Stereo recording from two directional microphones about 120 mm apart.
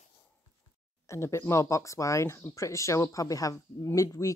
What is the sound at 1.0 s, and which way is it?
Speech, 25° left (ahead or behind).